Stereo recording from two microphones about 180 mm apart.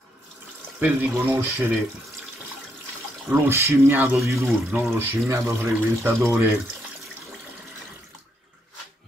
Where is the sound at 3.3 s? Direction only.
15° right (ahead or behind).